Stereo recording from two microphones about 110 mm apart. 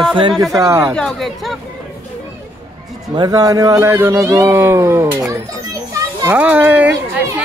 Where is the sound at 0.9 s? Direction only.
Centre (ahead or behind).